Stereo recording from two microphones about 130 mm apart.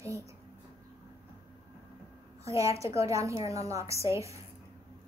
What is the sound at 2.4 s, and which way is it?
A woman's voice, 25° right (ahead or behind).